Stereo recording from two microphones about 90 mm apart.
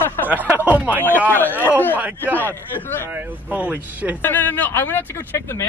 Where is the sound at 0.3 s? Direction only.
20° right (ahead or behind).